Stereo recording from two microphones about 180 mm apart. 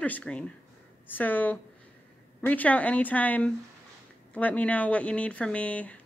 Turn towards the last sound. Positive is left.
turn(degrees=5)  # may be behind; listen again after turning